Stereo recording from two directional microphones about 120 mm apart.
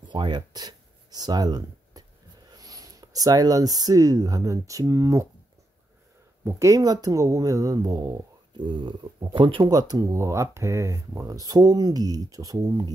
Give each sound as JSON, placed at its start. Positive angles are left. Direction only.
{"t": 0.1, "sound": "speech", "side_deg": -40}
{"t": 6.4, "sound": "speech", "side_deg": -25}